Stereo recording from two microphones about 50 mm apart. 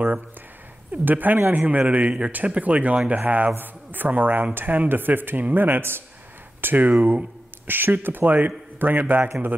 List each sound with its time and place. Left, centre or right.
0.9 s a man's voice: right